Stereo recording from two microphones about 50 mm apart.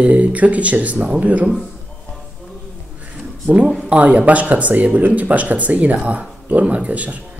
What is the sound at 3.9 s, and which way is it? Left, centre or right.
Speech, right.